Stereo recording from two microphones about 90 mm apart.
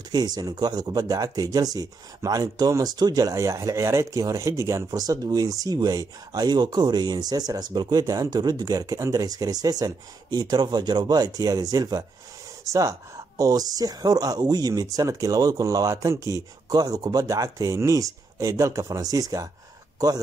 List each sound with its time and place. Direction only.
0.1 s speech: 50° right (ahead or behind)